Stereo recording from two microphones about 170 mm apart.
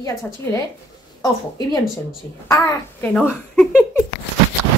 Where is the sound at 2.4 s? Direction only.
20° left (ahead or behind).